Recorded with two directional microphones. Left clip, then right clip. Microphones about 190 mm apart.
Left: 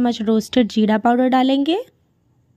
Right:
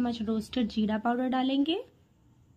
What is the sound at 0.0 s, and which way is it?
Speech, 35° left (ahead or behind).